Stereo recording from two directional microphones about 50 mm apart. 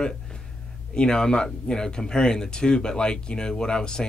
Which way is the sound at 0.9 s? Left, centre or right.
Centre.